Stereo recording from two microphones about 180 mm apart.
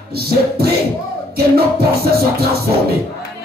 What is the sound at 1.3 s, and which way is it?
Music, 60° right (ahead or behind).